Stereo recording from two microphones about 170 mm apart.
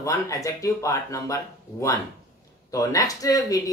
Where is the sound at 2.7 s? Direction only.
20° left (ahead or behind).